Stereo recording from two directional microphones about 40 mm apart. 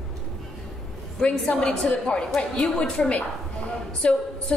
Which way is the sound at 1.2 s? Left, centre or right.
Centre.